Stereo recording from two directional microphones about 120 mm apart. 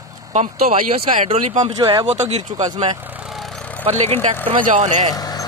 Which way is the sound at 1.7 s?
35° right (ahead or behind).